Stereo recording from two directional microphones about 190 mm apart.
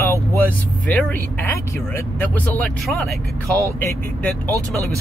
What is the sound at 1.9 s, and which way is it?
Speech, 10° left (ahead or behind).